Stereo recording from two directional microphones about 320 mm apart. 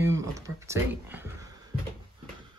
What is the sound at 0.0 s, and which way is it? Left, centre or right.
Speech, centre.